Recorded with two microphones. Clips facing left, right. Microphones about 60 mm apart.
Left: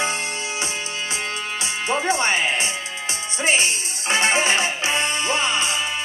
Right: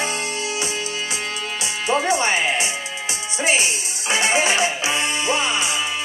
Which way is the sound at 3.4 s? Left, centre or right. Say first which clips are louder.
Even; left.